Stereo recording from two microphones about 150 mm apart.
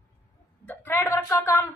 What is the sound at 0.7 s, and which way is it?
A woman's voice, 15° left (ahead or behind).